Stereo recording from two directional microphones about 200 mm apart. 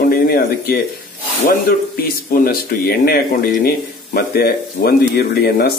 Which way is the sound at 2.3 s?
50° left (ahead or behind).